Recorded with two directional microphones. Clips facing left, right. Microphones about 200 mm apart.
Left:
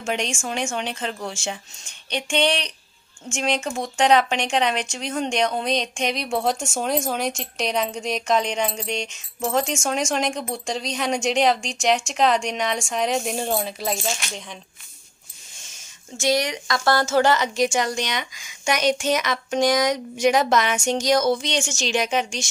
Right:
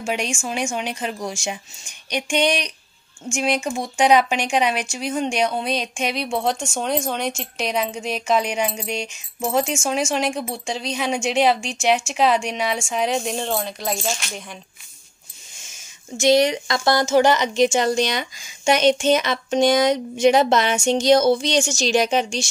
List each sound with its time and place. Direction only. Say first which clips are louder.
0.0 s speech: right 1 dB; 5° right (ahead or behind)
16.2 s a woman's voice: right 6 dB; 25° right (ahead or behind)